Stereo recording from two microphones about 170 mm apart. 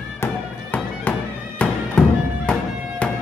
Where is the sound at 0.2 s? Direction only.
10° left (ahead or behind).